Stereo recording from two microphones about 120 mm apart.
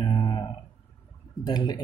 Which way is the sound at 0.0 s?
40° left (ahead or behind).